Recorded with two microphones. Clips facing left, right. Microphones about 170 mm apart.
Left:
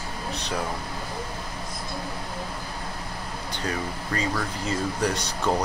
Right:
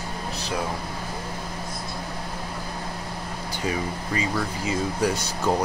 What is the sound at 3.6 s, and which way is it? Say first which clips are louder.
Speech: right 3 dB; 5° right (ahead or behind).